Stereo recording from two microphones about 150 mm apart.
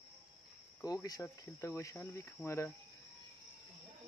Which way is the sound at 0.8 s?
20° left (ahead or behind).